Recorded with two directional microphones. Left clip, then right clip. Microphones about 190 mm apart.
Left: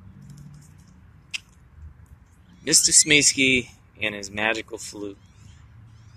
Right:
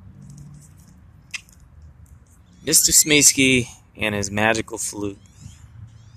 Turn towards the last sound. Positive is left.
turn(degrees=-15)  # may be behind; listen again after turning